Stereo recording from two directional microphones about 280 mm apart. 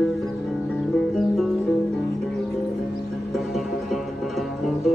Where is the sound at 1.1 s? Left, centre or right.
Centre.